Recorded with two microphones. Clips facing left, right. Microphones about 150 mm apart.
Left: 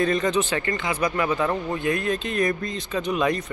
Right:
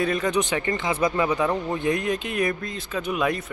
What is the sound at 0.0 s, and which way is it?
Speech, 10° right (ahead or behind).